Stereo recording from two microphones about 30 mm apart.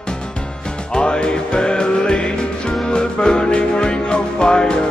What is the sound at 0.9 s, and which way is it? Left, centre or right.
Music, left.